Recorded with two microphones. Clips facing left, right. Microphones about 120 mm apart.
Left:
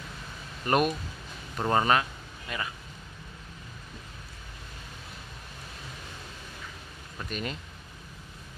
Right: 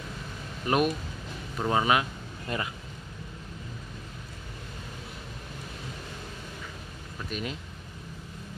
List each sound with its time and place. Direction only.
0.7 s speech: 5° right (ahead or behind)
2.4 s speech: 30° right (ahead or behind)
7.2 s speech: 5° right (ahead or behind)